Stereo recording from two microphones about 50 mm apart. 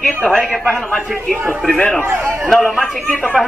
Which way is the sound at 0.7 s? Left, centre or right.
Centre.